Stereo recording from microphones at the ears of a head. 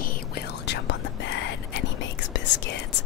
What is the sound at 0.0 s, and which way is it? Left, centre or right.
Whispering, left.